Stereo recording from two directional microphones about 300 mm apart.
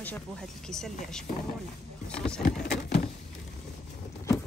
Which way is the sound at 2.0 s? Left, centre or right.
Centre.